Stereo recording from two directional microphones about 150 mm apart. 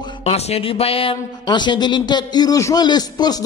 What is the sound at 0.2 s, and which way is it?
A woman's voice, 45° left (ahead or behind).